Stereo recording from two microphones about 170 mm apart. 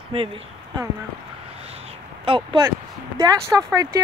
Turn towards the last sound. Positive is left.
turn(degrees=-20)  # may be behind; listen again after turning